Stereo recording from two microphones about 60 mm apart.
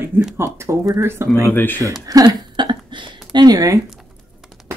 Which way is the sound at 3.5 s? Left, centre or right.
Right.